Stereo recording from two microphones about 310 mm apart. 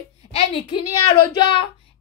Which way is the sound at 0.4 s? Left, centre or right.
Centre.